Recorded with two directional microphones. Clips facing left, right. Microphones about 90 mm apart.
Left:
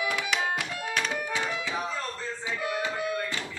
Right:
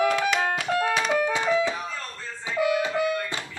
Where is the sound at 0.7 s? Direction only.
90° right.